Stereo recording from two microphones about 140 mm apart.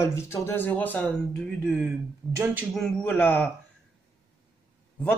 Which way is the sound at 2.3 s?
15° right (ahead or behind).